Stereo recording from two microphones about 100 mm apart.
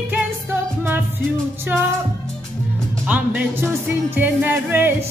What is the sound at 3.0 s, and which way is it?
Music, 15° right (ahead or behind).